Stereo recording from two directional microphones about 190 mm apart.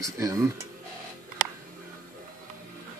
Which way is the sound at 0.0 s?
15° right (ahead or behind).